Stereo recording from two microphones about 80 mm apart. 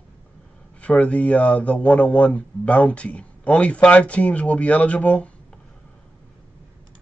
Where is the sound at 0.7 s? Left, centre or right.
Centre.